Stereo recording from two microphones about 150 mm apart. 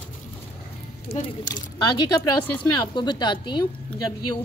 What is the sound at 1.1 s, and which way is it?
Speech, 90° left.